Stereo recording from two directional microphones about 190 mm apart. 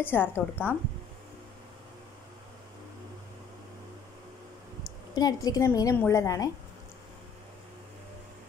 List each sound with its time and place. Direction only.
0.0 s a woman's voice: 10° left (ahead or behind)
5.1 s a woman's voice: 20° left (ahead or behind)